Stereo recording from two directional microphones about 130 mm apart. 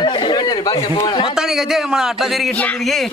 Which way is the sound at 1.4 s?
5° right (ahead or behind).